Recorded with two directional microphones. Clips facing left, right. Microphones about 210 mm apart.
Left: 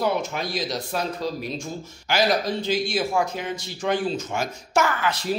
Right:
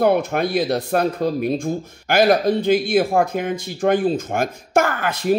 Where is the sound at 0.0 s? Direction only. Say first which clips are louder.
Right 8 dB; 55° right (ahead or behind).